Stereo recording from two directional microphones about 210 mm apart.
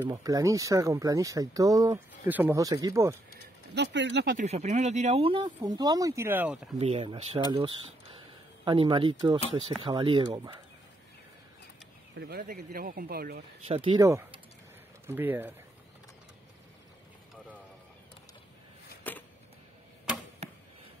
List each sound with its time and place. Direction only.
0.0 s speech: 15° right (ahead or behind)
3.7 s speech: 55° right (ahead or behind)
4.4 s speech: 30° right (ahead or behind); by 6.7 s 5° right (ahead or behind)
6.8 s speech: 30° right (ahead or behind)
8.6 s speech: 25° right (ahead or behind)
12.2 s speech: 50° right (ahead or behind)
13.7 s speech: 25° right (ahead or behind); by 15.5 s 10° right (ahead or behind)
19.1 s a sound: 10° left (ahead or behind)
20.4 s a sound: 30° right (ahead or behind)